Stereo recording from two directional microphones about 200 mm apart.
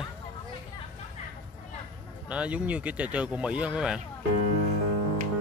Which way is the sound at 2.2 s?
5° right (ahead or behind).